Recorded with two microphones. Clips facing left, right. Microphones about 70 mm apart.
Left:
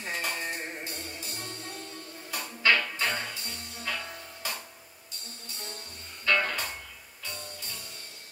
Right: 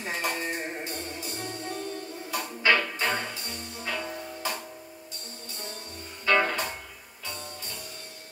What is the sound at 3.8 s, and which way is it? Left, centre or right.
Music, centre.